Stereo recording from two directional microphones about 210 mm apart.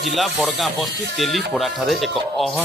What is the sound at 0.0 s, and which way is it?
Speech, centre (ahead or behind).